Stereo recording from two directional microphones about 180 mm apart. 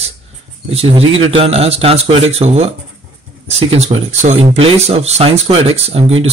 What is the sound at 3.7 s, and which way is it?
Speech, 35° right (ahead or behind).